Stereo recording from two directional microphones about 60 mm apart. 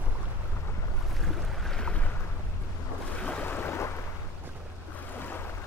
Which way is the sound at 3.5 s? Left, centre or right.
Left.